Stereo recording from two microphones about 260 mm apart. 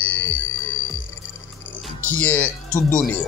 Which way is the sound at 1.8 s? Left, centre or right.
Centre.